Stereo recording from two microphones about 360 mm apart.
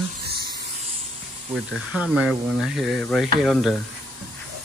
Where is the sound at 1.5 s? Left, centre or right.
Centre.